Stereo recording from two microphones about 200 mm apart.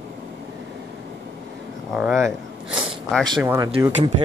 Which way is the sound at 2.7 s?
5° left (ahead or behind).